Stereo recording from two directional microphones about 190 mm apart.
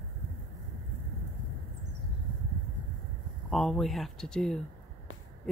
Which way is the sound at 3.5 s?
Centre (ahead or behind).